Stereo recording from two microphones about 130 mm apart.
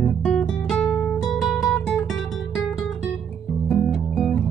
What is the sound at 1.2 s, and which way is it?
Music, centre (ahead or behind).